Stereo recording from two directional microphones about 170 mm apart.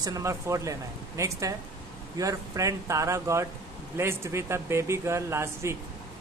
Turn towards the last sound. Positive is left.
turn(degrees=-15)  # may be behind; listen again after turning